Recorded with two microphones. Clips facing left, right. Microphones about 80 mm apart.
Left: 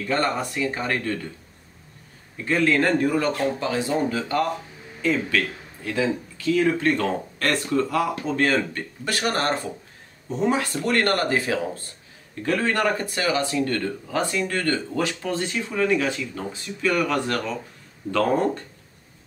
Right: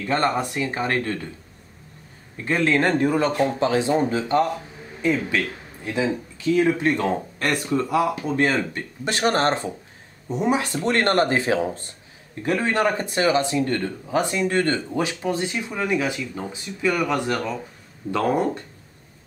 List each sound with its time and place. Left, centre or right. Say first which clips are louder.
0.1 s speech: right 2 dB; right
2.4 s speech: even; right